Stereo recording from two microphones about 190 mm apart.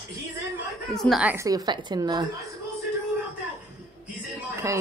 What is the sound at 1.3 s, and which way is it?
Speech, 20° right (ahead or behind).